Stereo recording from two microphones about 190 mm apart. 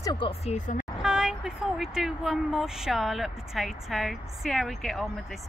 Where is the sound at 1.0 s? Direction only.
5° right (ahead or behind).